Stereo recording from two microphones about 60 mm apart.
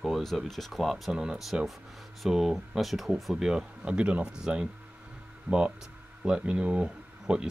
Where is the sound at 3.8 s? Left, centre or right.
Centre.